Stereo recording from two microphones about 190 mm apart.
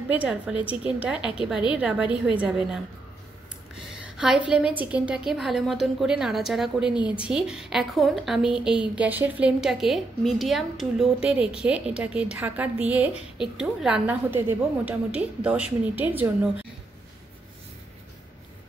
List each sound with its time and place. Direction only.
0.1 s a woman's voice: 5° right (ahead or behind)
0.6 s a woman's voice: 30° left (ahead or behind)
1.0 s a woman's voice: 5° right (ahead or behind)
3.7 s a sound: 5° right (ahead or behind)
4.5 s a woman's voice: 5° right (ahead or behind)